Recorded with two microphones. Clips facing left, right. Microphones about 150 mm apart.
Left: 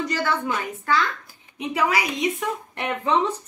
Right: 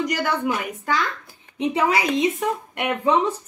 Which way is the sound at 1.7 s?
25° right (ahead or behind).